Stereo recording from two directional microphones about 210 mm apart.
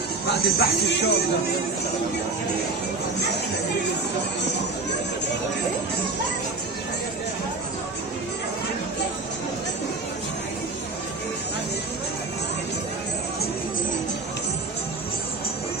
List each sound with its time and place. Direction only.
0.4 s speech: 50° left (ahead or behind)